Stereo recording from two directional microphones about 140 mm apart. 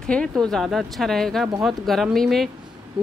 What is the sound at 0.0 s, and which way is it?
Speech, 5° left (ahead or behind).